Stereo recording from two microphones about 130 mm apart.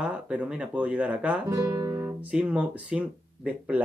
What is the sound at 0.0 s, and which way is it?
Speech, 10° right (ahead or behind).